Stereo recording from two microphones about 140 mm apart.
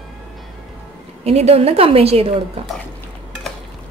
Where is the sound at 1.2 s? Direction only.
50° right (ahead or behind).